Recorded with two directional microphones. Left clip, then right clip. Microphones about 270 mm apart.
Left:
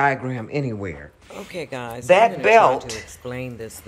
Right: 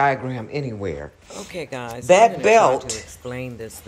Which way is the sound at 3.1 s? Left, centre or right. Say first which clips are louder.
Even; centre.